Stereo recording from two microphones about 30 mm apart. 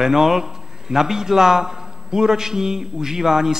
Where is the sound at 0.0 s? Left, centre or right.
Centre.